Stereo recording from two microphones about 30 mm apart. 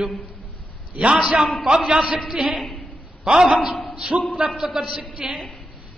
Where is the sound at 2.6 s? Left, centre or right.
Centre.